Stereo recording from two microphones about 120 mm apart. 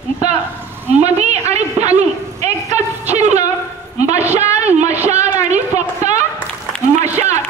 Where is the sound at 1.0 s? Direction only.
65° right (ahead or behind).